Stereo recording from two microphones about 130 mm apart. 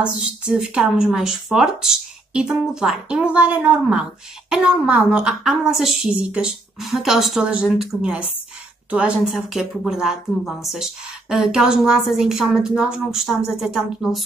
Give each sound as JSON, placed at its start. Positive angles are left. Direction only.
{"t": 0.0, "sound": "a woman's voice", "side_deg": -5}